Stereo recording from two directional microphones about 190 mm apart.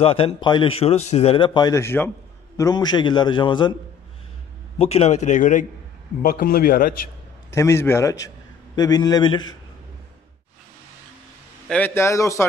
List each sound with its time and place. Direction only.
0.0 s speech: 30° left (ahead or behind)
4.7 s a man's voice: 30° left (ahead or behind); by 6.9 s 50° left (ahead or behind)
7.5 s a man's voice: 15° left (ahead or behind)
11.7 s a man's voice: 10° left (ahead or behind)